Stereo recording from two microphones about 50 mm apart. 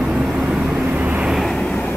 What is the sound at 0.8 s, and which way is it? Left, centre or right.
Vehicle, right.